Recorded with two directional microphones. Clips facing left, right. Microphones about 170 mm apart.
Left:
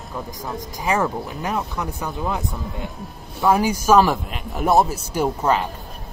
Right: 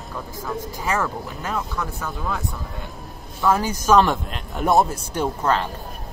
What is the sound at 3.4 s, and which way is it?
A man's voice, 10° left (ahead or behind).